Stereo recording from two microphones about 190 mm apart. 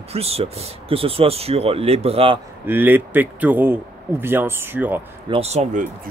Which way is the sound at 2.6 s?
10° right (ahead or behind).